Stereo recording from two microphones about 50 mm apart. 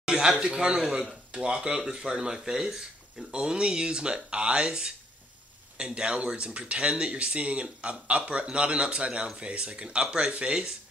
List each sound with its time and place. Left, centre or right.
0.0 s a sound: centre
0.4 s speech: centre
3.3 s speech: centre